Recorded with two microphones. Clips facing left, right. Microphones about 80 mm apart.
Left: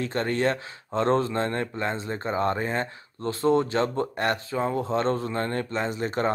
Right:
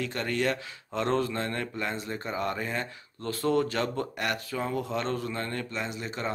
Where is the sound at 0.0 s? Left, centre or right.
Left.